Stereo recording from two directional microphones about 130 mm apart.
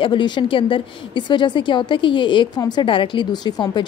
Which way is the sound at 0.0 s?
40° left (ahead or behind).